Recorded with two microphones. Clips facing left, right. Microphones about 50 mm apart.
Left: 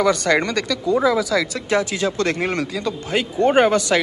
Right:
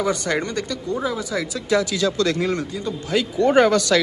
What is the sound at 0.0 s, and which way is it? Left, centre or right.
Speech, left.